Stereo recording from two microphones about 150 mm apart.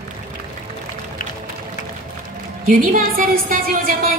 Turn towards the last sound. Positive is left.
turn(degrees=-65)  # may be behind; listen again after turning